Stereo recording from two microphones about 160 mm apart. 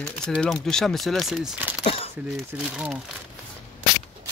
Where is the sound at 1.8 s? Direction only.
35° left (ahead or behind).